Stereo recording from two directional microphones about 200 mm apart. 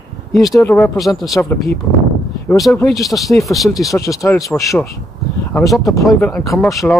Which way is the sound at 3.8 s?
15° left (ahead or behind).